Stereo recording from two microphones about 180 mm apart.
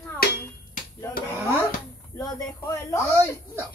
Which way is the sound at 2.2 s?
20° left (ahead or behind).